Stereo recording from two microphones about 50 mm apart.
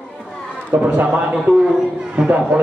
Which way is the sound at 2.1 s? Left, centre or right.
Right.